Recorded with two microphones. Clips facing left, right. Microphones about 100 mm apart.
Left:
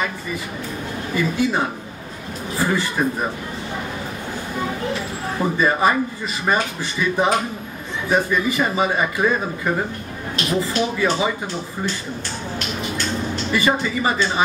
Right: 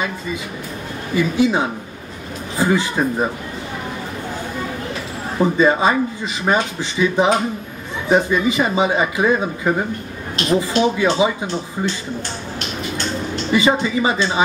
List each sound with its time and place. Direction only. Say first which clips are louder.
1.1 s speech: right 4 dB; 15° right (ahead or behind)
5.6 s speech: right 2 dB; 20° right (ahead or behind)
10.3 s speech: right 4 dB; 25° right (ahead or behind)
13.5 s speech: right 4 dB; 20° right (ahead or behind)